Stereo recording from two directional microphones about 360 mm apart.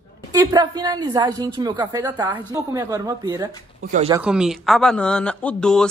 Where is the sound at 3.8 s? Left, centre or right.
Right.